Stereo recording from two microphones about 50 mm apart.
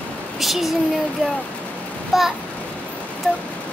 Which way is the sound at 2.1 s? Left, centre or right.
Centre.